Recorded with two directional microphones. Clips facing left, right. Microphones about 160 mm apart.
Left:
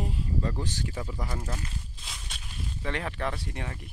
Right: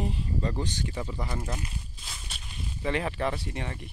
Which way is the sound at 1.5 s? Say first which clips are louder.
Right 1 dB; 15° right (ahead or behind).